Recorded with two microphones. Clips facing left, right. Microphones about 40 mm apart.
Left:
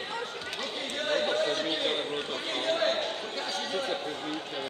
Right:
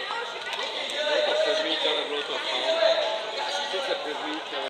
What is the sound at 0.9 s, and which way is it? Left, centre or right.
Chatter, right.